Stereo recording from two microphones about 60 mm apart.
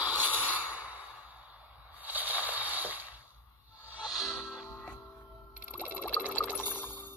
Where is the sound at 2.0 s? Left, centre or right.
Right.